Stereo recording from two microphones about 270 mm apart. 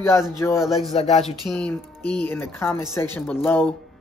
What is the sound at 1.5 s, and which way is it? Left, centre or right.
Speech, centre.